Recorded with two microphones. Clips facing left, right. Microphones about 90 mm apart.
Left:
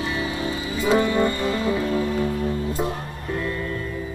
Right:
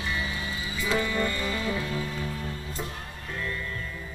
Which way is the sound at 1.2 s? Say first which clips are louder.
Left 7 dB; 40° left (ahead or behind).